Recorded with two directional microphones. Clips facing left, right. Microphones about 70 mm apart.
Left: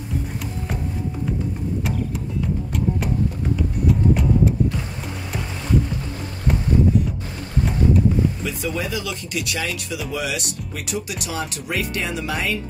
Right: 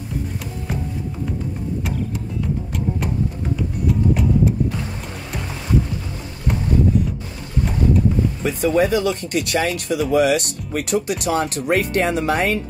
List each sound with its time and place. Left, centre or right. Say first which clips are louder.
3.5 s music: right 1 dB; centre
8.4 s speech: right 8 dB; right